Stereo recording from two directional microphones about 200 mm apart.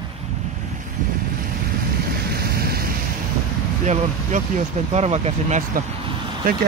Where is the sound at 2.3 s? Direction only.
50° right (ahead or behind).